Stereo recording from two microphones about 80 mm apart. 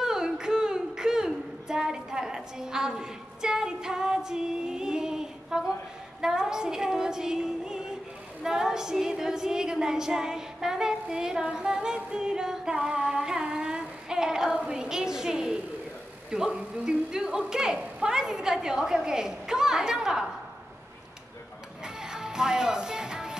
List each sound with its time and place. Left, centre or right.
0.0 s a sound: centre
6.2 s a woman's voice: centre
21.8 s music: centre